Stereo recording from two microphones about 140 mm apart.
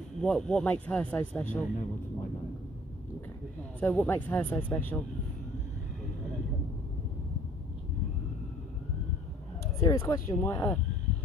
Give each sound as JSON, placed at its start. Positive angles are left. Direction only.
{"t": 0.2, "sound": "speech", "side_deg": 5}
{"t": 3.8, "sound": "speech", "side_deg": 10}
{"t": 9.8, "sound": "speech", "side_deg": 20}